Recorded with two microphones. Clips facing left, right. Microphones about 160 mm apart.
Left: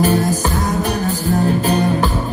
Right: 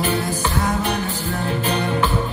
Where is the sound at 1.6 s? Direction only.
40° left (ahead or behind).